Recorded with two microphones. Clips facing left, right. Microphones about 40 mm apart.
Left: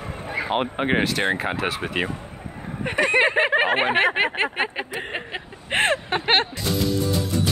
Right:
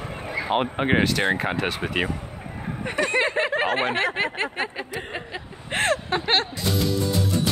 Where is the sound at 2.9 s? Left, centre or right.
Left.